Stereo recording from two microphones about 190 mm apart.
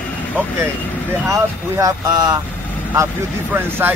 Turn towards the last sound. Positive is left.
turn(degrees=-10)  # may be behind; listen again after turning